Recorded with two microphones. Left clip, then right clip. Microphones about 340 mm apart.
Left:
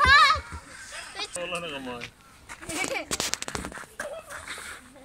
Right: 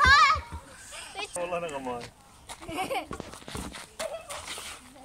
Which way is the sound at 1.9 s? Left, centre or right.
Right.